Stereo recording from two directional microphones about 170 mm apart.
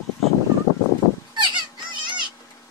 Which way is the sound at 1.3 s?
25° right (ahead or behind).